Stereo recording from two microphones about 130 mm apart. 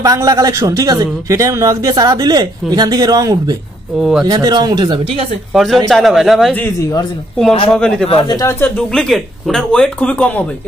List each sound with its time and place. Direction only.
0.0 s a man's voice: 30° right (ahead or behind)
5.5 s speech: centre (ahead or behind)
7.7 s speech: 5° left (ahead or behind)
8.1 s speech: 45° left (ahead or behind)
8.4 s speech: 20° left (ahead or behind)